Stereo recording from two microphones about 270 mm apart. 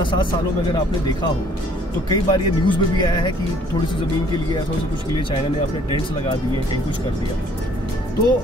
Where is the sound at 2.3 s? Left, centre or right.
Centre.